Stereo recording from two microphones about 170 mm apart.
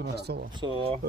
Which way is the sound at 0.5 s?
30° right (ahead or behind).